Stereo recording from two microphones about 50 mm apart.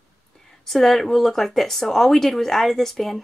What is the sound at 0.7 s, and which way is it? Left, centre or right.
Speech, centre.